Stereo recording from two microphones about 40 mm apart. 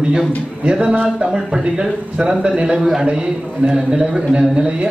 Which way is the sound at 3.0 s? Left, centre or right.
Right.